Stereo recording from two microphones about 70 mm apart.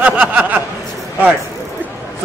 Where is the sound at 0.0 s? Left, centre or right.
Right.